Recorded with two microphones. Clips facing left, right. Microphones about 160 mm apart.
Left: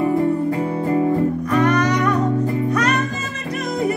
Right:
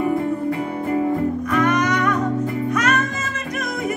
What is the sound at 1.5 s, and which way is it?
Music, 35° left (ahead or behind).